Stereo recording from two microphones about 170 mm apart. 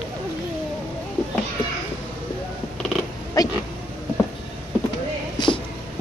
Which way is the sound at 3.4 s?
20° left (ahead or behind).